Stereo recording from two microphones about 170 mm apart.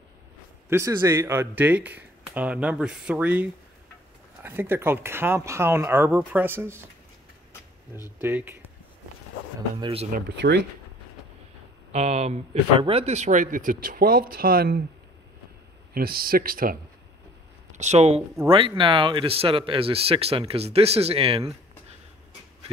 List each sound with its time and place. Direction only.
0.7 s speech: 15° right (ahead or behind)
8.2 s speech: 10° right (ahead or behind)
9.8 s speech: 30° right (ahead or behind)
10.1 s speech: 75° right (ahead or behind)
11.9 s speech: 40° right (ahead or behind); by 14.8 s 60° right (ahead or behind)
15.9 s speech: 60° right (ahead or behind)
17.7 s speech: 40° right (ahead or behind)